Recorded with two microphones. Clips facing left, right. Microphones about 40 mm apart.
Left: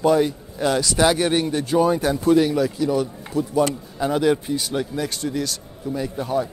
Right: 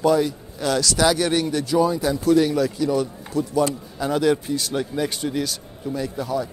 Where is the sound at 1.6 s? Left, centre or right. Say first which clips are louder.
Left 2 dB; left.